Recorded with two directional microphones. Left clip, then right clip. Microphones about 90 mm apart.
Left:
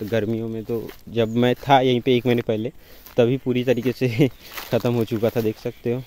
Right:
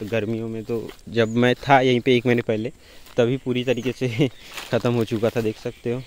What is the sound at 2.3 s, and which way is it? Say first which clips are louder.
Speech: even; 15° left (ahead or behind).